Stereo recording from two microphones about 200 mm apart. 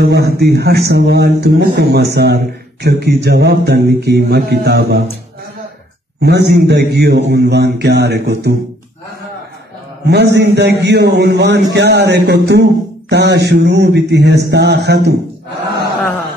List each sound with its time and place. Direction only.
0.0 s a man's voice: 55° right (ahead or behind)
6.2 s a man's voice: 55° right (ahead or behind)
10.0 s a man's voice: 55° right (ahead or behind)